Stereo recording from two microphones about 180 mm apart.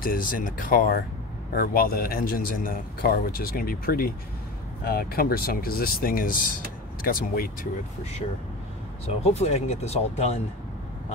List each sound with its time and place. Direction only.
0.0 s speech: 50° left (ahead or behind)
9.0 s speech: 35° left (ahead or behind)